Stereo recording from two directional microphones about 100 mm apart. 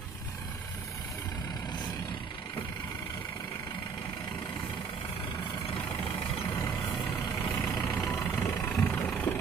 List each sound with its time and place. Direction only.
5.9 s vehicle: 30° left (ahead or behind)
6.7 s vehicle: 5° left (ahead or behind)
7.2 s vehicle: 25° left (ahead or behind)
8.2 s vehicle: 20° left (ahead or behind)